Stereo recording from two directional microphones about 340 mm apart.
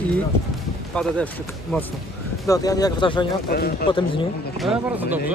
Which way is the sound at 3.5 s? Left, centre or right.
Left.